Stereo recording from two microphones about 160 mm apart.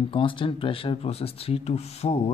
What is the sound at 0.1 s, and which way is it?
Speech, 30° left (ahead or behind).